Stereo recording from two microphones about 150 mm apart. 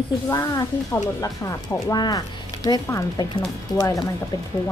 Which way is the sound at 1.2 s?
25° left (ahead or behind).